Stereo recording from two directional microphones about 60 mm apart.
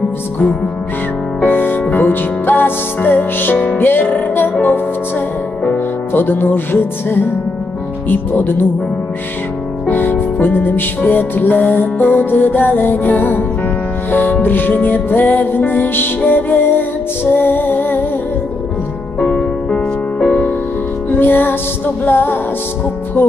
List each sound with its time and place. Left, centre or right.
1.4 s music: left
6.1 s music: left
9.8 s music: left
19.1 s music: centre
21.1 s music: left